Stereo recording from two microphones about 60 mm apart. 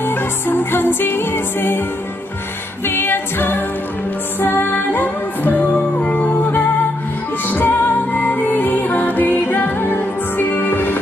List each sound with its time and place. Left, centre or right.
0.0 s music: left
2.9 s a capella: left
4.4 s music: left